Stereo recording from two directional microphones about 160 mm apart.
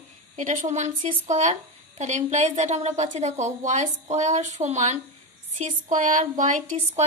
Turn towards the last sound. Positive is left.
turn(degrees=-50)  # may be behind; listen again after turning